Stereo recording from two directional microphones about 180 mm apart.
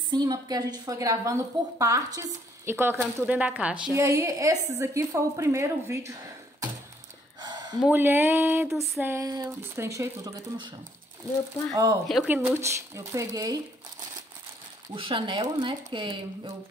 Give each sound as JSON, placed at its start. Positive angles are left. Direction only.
{"t": 0.1, "sound": "a woman's voice", "side_deg": -20}
{"t": 7.3, "sound": "a sound", "side_deg": -25}
{"t": 7.8, "sound": "a woman's voice", "side_deg": -10}
{"t": 11.7, "sound": "a woman's voice", "side_deg": -20}
{"t": 15.0, "sound": "speech", "side_deg": -30}